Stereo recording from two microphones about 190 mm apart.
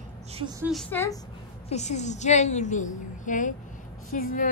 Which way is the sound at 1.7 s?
35° left (ahead or behind).